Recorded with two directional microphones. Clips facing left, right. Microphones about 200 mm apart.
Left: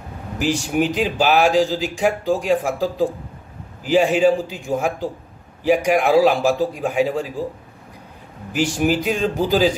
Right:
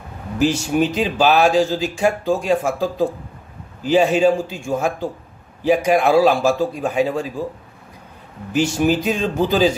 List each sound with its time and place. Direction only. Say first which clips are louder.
0.4 s speech: right 2 dB; 15° left (ahead or behind)
8.5 s speech: right 2 dB; 15° left (ahead or behind)